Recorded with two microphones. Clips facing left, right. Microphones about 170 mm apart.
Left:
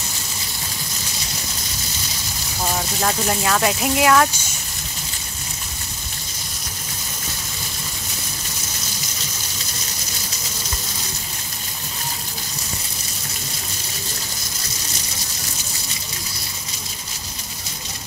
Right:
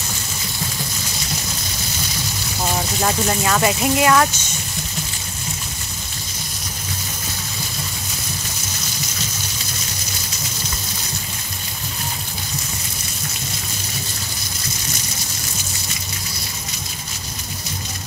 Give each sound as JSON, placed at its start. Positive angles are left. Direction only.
{"t": 3.0, "sound": "speech", "side_deg": -5}